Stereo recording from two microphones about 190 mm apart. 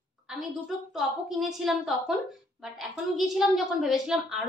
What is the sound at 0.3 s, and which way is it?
A woman's voice, centre (ahead or behind).